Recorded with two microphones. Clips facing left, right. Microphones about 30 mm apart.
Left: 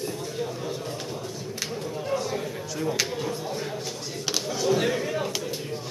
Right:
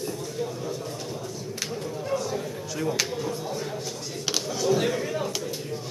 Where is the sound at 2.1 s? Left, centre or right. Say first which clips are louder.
Even; left.